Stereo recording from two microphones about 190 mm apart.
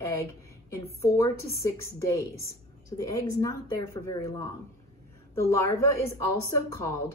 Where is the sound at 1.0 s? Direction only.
15° left (ahead or behind).